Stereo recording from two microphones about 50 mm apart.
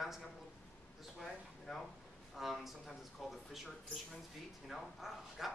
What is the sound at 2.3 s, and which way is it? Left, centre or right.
Speech, centre.